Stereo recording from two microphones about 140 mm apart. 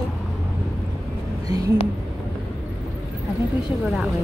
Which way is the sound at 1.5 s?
25° right (ahead or behind).